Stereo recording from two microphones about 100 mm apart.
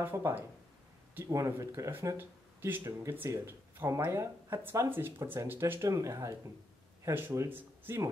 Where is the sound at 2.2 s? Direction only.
20° right (ahead or behind).